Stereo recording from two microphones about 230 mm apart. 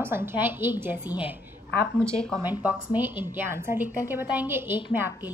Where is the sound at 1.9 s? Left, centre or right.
Centre.